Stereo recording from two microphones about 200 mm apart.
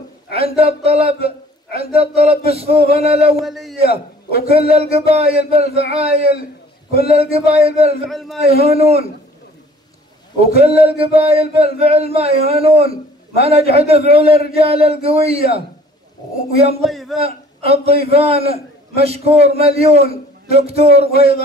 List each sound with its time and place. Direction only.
0.3 s a man's voice: 30° right (ahead or behind)
3.4 s a man's voice: centre (ahead or behind)
3.8 s a man's voice: 50° left (ahead or behind)
4.7 s a man's voice: 30° right (ahead or behind)
8.1 s a man's voice: centre (ahead or behind)
8.6 s a man's voice: 30° right (ahead or behind)
10.6 s a man's voice: 30° right (ahead or behind)
16.8 s a man's voice: centre (ahead or behind)
17.6 s a man's voice: 30° right (ahead or behind)